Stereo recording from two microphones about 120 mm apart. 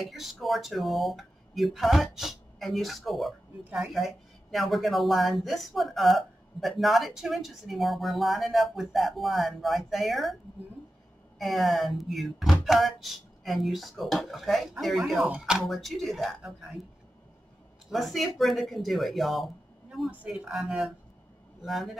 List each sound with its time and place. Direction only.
0.1 s speech: centre (ahead or behind)
11.3 s speech: centre (ahead or behind)
17.9 s speech: centre (ahead or behind)